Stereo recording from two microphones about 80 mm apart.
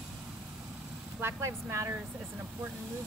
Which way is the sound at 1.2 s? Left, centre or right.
Right.